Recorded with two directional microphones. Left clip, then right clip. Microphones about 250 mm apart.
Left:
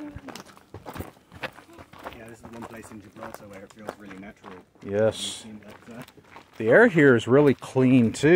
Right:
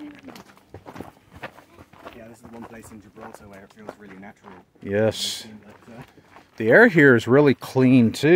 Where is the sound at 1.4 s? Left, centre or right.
Left.